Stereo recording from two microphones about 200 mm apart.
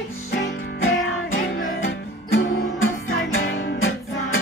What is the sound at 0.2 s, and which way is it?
Music, 60° left (ahead or behind).